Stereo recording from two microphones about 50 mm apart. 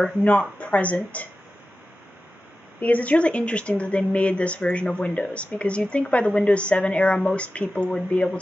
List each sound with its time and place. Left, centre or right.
0.2 s speech: left
2.8 s speech: left